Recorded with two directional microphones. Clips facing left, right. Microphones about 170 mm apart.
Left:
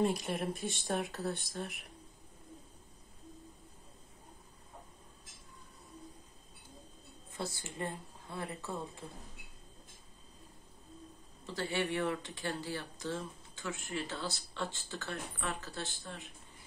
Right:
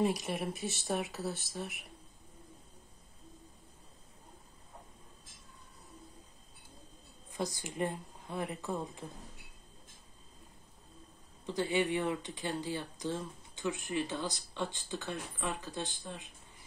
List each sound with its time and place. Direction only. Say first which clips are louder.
0.0 s speech: even; centre (ahead or behind)
7.3 s speech: right 4 dB; 15° right (ahead or behind)
11.4 s speech: right 4 dB; 15° right (ahead or behind)